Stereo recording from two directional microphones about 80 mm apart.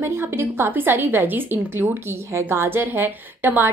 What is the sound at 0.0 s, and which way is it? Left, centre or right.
A woman's voice, right.